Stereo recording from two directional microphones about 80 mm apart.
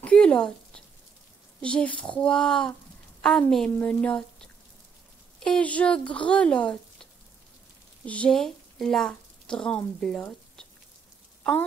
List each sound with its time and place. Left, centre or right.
0.0 s speech: centre
2.3 s speech: centre
8.4 s speech: centre
10.2 s a sound: centre
11.4 s speech: centre